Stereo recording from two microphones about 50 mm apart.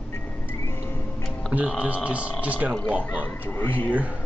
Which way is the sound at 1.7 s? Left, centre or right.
Right.